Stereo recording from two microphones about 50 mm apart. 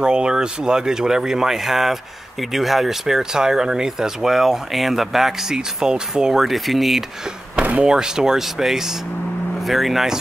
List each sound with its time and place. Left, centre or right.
0.0 s speech: centre
6.4 s speech: centre
7.5 s a sound: right
7.8 s speech: centre